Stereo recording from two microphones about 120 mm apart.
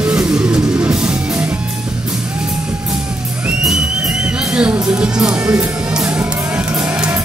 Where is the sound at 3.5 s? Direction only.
5° right (ahead or behind).